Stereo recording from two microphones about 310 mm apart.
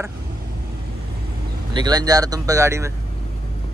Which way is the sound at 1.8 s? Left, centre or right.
Centre.